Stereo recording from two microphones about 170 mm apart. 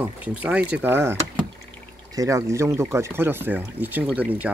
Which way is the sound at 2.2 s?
20° right (ahead or behind).